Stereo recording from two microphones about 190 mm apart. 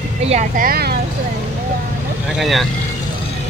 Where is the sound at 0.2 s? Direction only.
35° right (ahead or behind); by 0.9 s 50° right (ahead or behind).